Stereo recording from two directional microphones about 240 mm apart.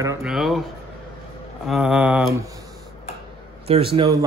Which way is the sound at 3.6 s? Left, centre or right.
Right.